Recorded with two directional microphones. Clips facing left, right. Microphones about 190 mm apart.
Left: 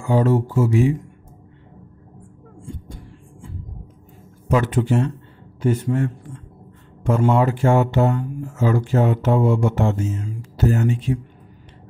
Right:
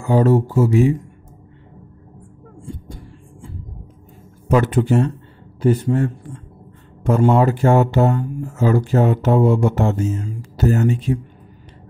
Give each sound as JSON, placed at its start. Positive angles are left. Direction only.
{"t": 0.0, "sound": "speech", "side_deg": -40}
{"t": 4.5, "sound": "speech", "side_deg": -45}